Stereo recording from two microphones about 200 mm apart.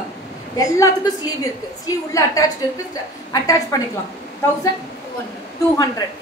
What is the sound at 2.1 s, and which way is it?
A woman's voice, 15° left (ahead or behind).